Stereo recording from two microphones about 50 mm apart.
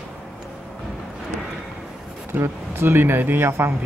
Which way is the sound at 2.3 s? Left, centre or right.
Right.